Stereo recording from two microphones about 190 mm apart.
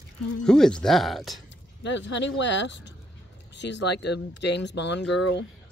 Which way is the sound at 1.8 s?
70° left (ahead or behind).